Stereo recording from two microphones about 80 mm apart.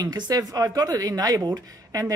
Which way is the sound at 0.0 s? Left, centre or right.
Right.